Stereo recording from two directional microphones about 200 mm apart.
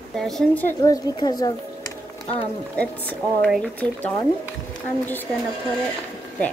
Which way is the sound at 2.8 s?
5° left (ahead or behind).